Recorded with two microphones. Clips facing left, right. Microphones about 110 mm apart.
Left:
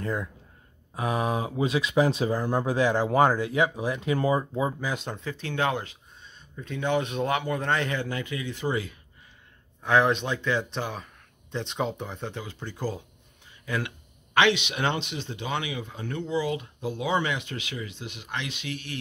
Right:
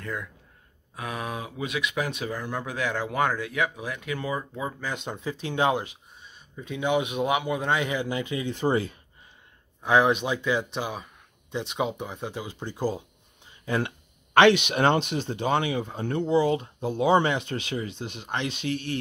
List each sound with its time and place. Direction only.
0.0 s speech: 30° left (ahead or behind)
4.4 s speech: 20° left (ahead or behind)
4.9 s speech: centre (ahead or behind)
5.2 s speech: 15° right (ahead or behind); by 8.9 s 35° right (ahead or behind)
9.8 s speech: 10° right (ahead or behind)
12.4 s speech: 15° right (ahead or behind)
13.7 s speech: 35° right (ahead or behind)